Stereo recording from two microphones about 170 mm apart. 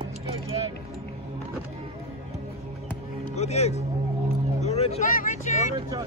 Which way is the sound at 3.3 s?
40° left (ahead or behind).